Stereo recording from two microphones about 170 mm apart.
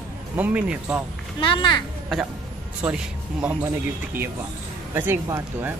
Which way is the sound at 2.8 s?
10° right (ahead or behind).